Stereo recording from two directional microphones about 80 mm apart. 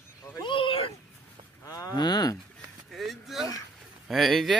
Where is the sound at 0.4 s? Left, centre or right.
Left.